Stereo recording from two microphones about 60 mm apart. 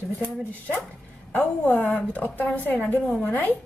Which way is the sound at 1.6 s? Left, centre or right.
Left.